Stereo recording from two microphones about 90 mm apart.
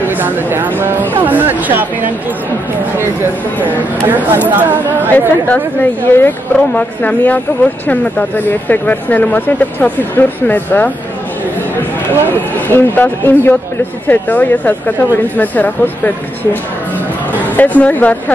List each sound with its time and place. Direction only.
0.0 s a sound: 20° right (ahead or behind)
3.6 s speech: 20° right (ahead or behind)
5.5 s a woman's voice: 20° left (ahead or behind)
12.5 s a woman's voice: 20° left (ahead or behind)
17.6 s speech: 20° left (ahead or behind)